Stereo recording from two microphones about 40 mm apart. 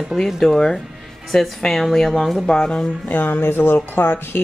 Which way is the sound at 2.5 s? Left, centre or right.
Left.